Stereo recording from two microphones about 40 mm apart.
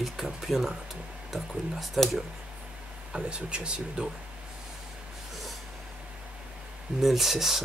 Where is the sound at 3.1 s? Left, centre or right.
Right.